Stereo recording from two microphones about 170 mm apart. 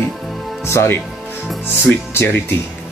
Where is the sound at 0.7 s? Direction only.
15° left (ahead or behind).